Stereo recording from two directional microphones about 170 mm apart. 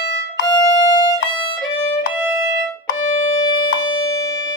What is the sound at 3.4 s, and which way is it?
Music, 25° left (ahead or behind).